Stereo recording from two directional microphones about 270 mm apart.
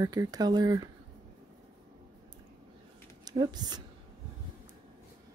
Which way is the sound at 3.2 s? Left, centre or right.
Centre.